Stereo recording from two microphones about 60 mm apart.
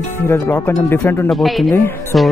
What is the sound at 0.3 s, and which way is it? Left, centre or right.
Speech, left.